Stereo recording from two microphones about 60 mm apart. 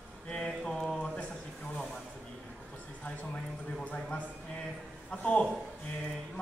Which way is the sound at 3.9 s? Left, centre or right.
Left.